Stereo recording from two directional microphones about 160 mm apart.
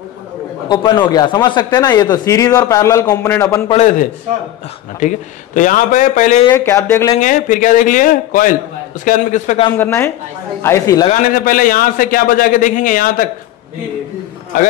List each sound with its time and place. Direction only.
0.7 s speech: 25° left (ahead or behind)
3.7 s speech: 50° left (ahead or behind)
6.5 s speech: 15° left (ahead or behind)
7.2 s a man's voice: 55° left (ahead or behind)
9.8 s speech: 15° left (ahead or behind)
11.1 s a man's voice: 60° left (ahead or behind)